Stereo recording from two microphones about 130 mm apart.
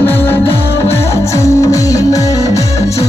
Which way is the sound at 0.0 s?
15° left (ahead or behind).